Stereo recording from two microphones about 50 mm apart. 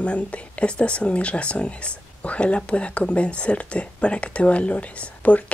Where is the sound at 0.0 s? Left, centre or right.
Left.